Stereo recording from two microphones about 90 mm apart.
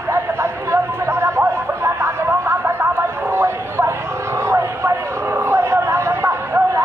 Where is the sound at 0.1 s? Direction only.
30° right (ahead or behind).